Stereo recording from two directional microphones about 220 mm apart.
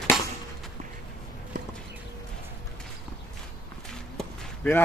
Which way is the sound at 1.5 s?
35° right (ahead or behind).